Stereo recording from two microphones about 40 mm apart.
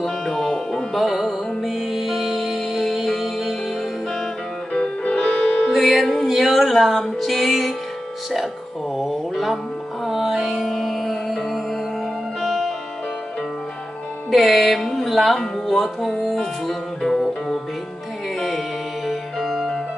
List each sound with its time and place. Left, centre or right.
0.0 s music: centre
0.9 s music: centre
5.2 s music: centre
5.7 s music: centre
8.9 s a sound: centre
10.0 s music: centre
10.4 s music: centre
14.3 s music: centre
19.0 s music: centre